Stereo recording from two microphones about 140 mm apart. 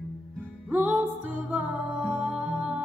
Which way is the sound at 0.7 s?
15° right (ahead or behind).